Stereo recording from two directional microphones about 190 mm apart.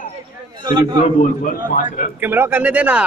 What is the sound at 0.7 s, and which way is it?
Speech, 20° right (ahead or behind).